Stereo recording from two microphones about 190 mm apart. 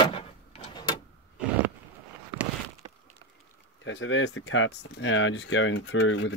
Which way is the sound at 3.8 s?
85° left.